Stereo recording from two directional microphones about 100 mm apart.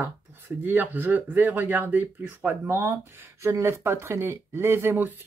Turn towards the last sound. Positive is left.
turn(degrees=-20)  # may be behind; listen again after turning